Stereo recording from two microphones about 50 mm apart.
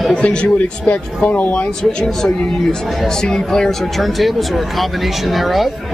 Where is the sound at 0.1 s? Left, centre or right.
Centre.